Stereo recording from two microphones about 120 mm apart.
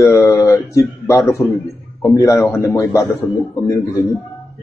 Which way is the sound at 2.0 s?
30° left (ahead or behind).